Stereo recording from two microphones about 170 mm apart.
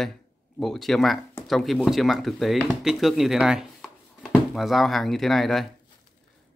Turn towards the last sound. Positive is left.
turn(degrees=0)  # may be behind; listen again after turning